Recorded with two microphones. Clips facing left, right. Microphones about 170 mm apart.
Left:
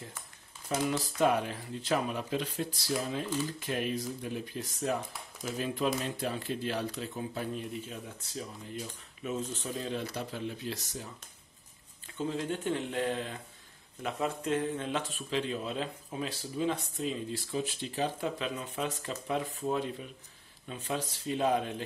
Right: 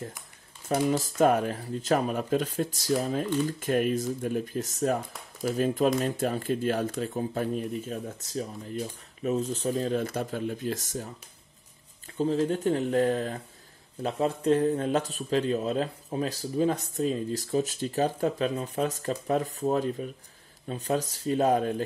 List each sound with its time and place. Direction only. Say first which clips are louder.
0.7 s speech: right 6 dB; 50° right (ahead or behind)
12.2 s speech: right 8 dB; 35° right (ahead or behind)